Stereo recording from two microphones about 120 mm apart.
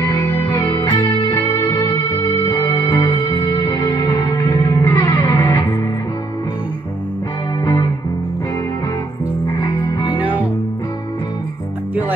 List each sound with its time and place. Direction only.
0.0 s music: 30° left (ahead or behind)
9.6 s music: 45° left (ahead or behind)
10.2 s music: 15° right (ahead or behind)